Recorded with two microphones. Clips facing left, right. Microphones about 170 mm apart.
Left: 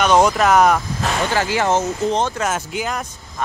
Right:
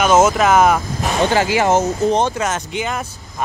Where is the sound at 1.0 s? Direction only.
20° right (ahead or behind).